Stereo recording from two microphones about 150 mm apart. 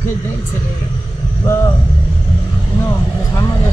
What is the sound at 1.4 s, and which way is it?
Speech, 20° left (ahead or behind).